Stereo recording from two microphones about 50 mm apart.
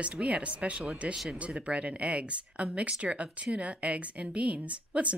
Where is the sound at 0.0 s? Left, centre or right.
Right.